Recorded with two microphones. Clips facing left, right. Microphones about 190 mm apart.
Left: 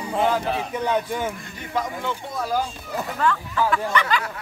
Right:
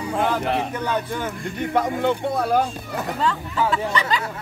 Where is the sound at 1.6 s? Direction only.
60° right (ahead or behind).